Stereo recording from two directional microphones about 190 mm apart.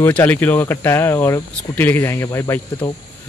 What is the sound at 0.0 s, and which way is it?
Speech, 10° left (ahead or behind).